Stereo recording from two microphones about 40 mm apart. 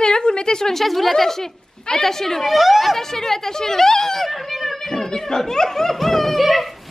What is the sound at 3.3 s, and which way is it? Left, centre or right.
A woman's voice, centre.